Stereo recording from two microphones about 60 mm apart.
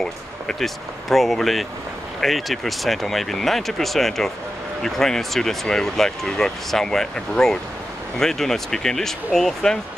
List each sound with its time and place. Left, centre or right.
0.0 s speech: centre